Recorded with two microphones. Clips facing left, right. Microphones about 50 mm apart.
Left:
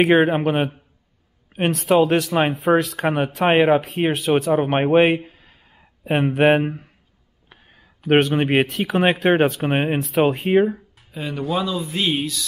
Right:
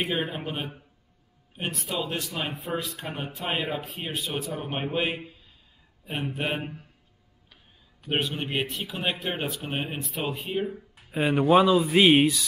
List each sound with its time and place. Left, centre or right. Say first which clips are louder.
0.0 s speech: left 14 dB; left
2.6 s speech: left 14 dB; left
8.1 s speech: left 12 dB; left
11.1 s speech: right 4 dB; right